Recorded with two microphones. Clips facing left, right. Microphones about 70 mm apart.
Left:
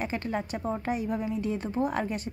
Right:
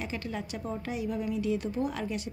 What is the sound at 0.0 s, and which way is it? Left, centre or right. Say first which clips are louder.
A woman's voice: left 5 dB; left.